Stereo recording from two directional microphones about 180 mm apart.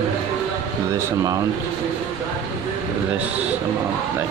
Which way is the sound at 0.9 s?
20° right (ahead or behind).